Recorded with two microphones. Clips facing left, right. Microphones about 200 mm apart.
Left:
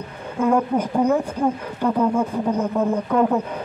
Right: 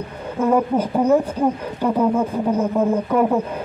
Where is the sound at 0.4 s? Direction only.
5° right (ahead or behind).